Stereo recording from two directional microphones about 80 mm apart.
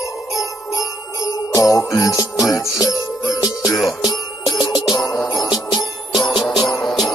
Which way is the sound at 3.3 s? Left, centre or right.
Centre.